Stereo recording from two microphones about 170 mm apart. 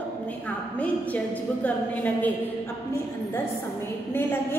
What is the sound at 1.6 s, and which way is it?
Speech, 10° left (ahead or behind).